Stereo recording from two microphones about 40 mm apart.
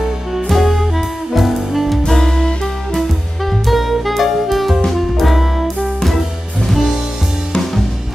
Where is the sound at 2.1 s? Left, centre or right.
Centre.